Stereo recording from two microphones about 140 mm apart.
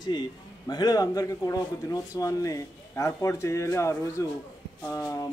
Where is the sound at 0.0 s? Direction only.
30° left (ahead or behind).